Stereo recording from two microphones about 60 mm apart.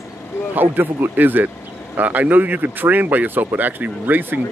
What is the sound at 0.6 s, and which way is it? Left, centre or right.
Speech, right.